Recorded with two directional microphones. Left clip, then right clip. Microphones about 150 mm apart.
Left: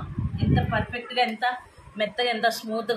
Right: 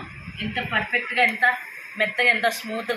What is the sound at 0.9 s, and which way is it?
Speech, 30° left (ahead or behind).